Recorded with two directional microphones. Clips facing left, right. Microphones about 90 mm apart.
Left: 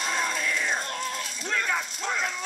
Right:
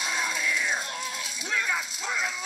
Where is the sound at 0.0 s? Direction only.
5° right (ahead or behind).